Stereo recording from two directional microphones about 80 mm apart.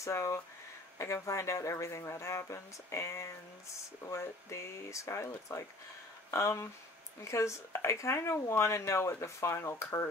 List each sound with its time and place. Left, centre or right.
0.0 s speech: left